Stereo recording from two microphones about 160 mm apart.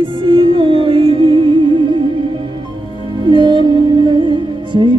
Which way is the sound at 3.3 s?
30° right (ahead or behind).